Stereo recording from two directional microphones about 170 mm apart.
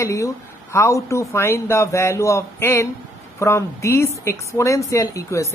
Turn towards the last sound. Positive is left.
turn(degrees=15)  # may be behind; listen again after turning